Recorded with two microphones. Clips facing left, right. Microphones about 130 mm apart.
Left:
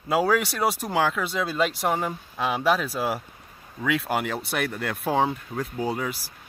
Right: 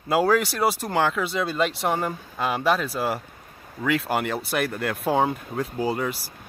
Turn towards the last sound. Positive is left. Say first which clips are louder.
# right 2 dB
turn(degrees=0)  # may be behind; listen again after turning